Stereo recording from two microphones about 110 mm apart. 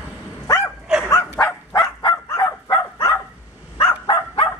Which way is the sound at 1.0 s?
25° left (ahead or behind).